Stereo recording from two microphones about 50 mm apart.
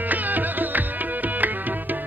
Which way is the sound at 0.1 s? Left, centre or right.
Right.